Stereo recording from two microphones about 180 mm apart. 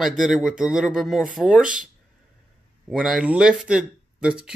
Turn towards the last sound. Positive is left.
turn(degrees=-5)  # may be behind; listen again after turning